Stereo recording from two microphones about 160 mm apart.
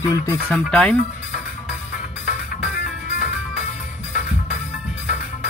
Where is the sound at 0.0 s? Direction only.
15° left (ahead or behind).